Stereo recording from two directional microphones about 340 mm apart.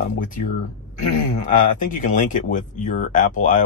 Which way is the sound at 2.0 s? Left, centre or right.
Left.